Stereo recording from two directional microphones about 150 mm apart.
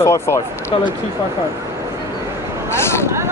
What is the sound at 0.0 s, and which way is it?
Speech, 20° left (ahead or behind).